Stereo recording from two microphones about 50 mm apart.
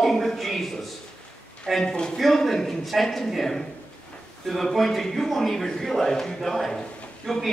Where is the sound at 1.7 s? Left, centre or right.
Centre.